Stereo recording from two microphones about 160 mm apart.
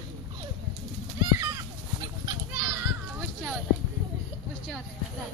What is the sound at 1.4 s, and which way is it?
Chicken, 20° right (ahead or behind).